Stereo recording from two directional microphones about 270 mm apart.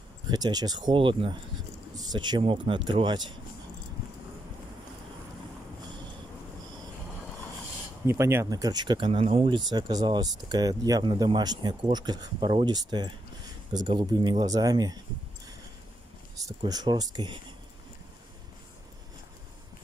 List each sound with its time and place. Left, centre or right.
0.3 s speech: centre
8.1 s speech: centre
16.4 s speech: centre